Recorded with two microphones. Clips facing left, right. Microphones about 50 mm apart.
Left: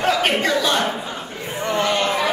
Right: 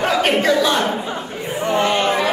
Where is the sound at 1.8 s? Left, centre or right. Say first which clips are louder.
Right 2 dB; right.